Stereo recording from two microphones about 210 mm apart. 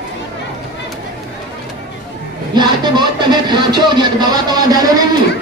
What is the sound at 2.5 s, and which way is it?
Music, 20° right (ahead or behind).